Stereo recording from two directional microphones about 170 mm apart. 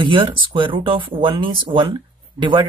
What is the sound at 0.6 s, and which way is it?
Speech, 30° right (ahead or behind).